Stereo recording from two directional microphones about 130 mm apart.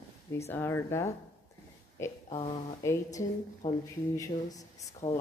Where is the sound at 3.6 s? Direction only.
50° left (ahead or behind).